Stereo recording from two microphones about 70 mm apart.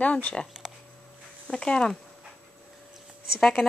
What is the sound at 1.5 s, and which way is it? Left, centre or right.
Speech, centre.